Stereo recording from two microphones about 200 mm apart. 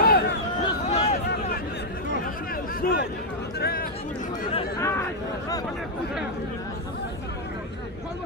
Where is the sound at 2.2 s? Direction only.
45° left (ahead or behind).